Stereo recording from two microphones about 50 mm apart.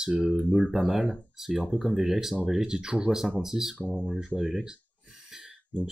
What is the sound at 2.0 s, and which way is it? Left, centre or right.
Speech, centre.